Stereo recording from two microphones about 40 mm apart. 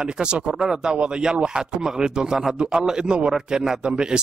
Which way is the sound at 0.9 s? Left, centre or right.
Right.